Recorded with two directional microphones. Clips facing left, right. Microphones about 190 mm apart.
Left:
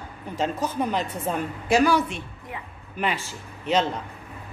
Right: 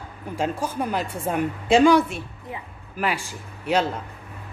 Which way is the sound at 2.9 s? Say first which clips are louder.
Right 1 dB; 10° right (ahead or behind).